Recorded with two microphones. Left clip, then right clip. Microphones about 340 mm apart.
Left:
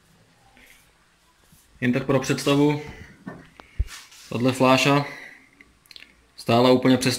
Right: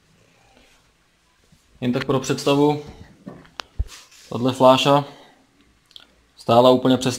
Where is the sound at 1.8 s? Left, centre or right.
Centre.